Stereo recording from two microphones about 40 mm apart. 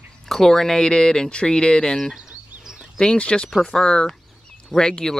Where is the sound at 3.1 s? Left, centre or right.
Left.